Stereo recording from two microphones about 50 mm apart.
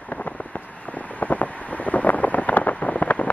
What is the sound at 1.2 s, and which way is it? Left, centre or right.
Wind noise, left.